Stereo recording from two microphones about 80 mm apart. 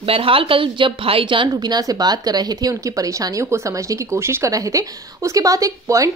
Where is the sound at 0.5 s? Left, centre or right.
Right.